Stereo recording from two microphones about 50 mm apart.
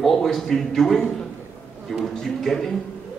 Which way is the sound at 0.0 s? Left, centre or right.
Centre.